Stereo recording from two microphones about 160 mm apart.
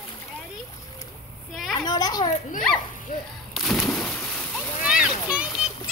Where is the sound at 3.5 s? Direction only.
Centre (ahead or behind).